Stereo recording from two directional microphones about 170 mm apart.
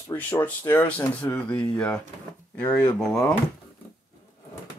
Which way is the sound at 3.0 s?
10° left (ahead or behind).